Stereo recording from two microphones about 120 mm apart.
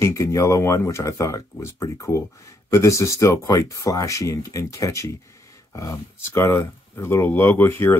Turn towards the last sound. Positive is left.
turn(degrees=20)  # may be behind; listen again after turning